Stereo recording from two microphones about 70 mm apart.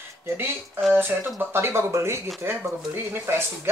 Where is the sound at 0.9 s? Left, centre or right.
Right.